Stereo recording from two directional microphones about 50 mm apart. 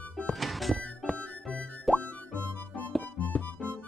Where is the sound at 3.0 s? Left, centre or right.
Left.